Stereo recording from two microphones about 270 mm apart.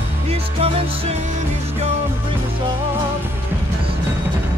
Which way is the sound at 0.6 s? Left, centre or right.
Right.